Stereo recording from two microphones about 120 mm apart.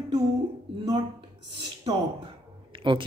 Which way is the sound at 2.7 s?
40° right (ahead or behind).